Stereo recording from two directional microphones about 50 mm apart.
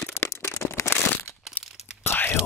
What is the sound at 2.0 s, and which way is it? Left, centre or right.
Whispering, left.